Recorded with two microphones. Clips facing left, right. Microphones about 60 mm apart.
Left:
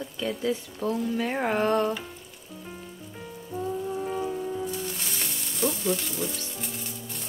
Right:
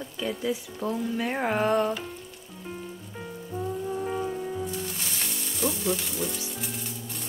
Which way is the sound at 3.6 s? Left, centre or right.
Centre.